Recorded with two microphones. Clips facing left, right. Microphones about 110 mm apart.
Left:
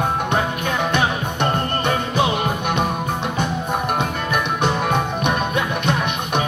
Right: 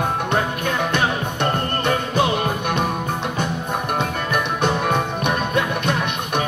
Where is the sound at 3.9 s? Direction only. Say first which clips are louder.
Even; 15° left (ahead or behind).